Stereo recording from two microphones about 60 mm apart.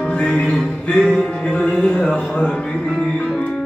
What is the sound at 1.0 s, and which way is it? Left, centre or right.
Music, centre.